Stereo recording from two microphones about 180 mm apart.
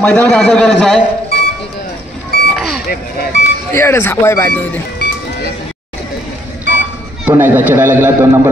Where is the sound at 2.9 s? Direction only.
60° left (ahead or behind).